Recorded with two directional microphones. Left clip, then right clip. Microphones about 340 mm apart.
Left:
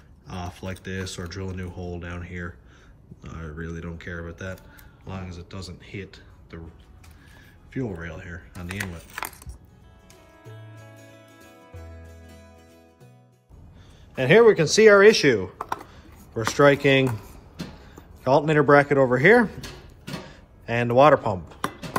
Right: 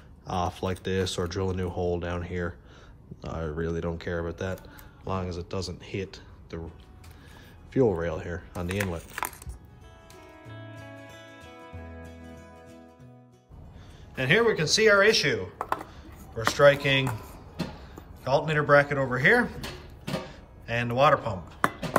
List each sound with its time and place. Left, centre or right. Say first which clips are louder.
0.3 s speech: right 7 dB; centre
7.7 s speech: right 8 dB; centre
10.4 s music: right 2 dB; centre
14.1 s speech: left 7 dB; centre
15.5 s computer keyboard: even; centre
16.0 s speech: left 1 dB; centre
18.2 s speech: left 6 dB; centre
20.2 s music: left 4 dB; centre